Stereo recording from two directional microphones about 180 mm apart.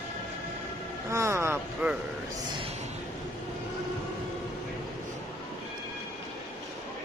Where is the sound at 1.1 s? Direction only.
15° right (ahead or behind).